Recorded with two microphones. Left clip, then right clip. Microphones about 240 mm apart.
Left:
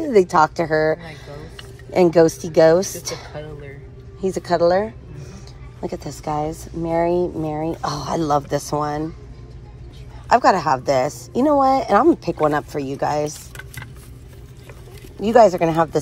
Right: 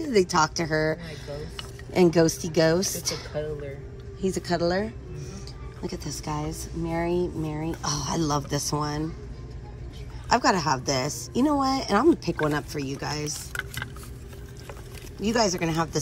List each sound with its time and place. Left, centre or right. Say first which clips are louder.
0.0 s speech: left 7 dB; centre
1.9 s a woman's voice: left 7 dB; centre
10.2 s a woman's voice: left 7 dB; centre
15.2 s speech: left 12 dB; centre